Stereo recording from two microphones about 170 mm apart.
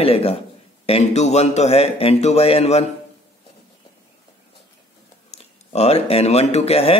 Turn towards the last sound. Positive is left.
turn(degrees=35)  # may be behind; listen again after turning